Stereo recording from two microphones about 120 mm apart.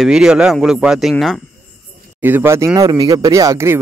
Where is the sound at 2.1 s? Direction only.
15° right (ahead or behind).